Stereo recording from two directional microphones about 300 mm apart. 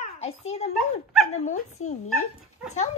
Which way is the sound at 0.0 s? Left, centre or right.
Left.